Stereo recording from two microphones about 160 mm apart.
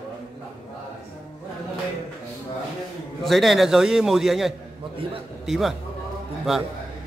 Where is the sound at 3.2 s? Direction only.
Centre (ahead or behind).